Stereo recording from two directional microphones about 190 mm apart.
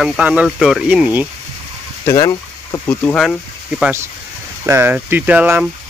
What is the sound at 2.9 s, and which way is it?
Speech, 5° left (ahead or behind).